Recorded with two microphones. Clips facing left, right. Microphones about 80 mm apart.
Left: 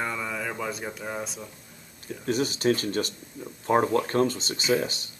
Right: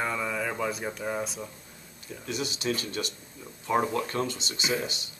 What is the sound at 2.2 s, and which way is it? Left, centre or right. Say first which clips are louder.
Speech: left 7 dB; left.